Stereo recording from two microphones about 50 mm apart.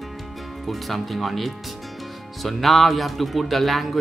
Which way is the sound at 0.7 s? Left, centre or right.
Centre.